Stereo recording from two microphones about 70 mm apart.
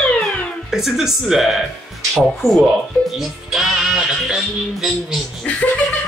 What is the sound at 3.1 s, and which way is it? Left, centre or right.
Music, centre.